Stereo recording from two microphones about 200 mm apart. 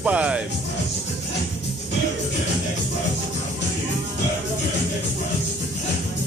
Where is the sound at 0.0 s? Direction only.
5° right (ahead or behind).